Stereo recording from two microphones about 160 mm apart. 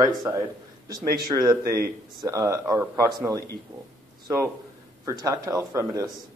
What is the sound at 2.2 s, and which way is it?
Speech, 20° right (ahead or behind).